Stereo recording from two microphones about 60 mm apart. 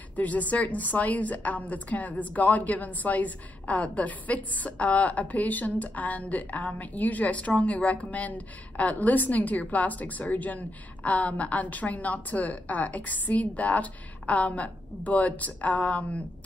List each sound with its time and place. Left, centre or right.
0.1 s a woman's voice: left